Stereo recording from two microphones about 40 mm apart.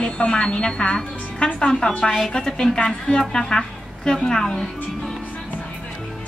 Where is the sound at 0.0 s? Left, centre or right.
Left; by 5.1 s centre.